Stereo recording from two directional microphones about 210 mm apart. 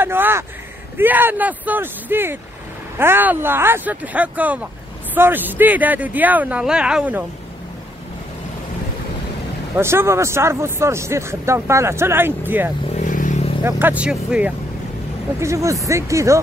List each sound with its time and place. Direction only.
0.0 s vehicle: 10° right (ahead or behind)
0.9 s speech: 10° right (ahead or behind)
9.8 s speech: 10° right (ahead or behind)
12.9 s vehicle: 40° left (ahead or behind)
13.7 s speech: 10° right (ahead or behind)